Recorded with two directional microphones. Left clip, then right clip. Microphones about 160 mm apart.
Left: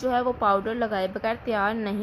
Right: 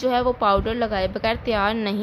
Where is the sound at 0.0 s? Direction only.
5° right (ahead or behind).